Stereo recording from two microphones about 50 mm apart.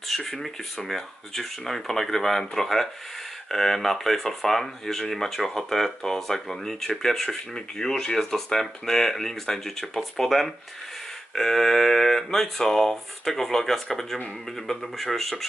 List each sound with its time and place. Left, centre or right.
0.1 s speech: centre
14.1 s speech: centre
14.8 s speech: centre